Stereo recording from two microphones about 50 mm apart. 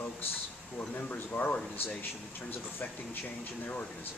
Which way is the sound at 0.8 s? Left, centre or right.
Left.